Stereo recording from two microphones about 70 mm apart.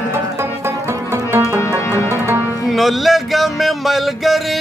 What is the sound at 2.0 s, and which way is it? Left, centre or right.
Music, right.